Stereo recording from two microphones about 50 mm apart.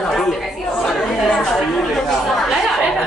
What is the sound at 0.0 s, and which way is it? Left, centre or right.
Chatter, centre.